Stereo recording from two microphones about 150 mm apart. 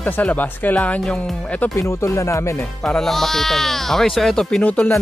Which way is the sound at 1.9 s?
20° left (ahead or behind).